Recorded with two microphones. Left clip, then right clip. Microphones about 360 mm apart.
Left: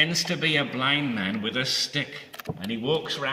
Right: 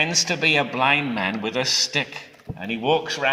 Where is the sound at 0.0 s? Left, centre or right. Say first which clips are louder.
Right 4 dB; right.